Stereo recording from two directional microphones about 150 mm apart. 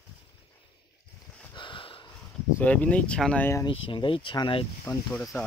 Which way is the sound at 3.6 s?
35° left (ahead or behind).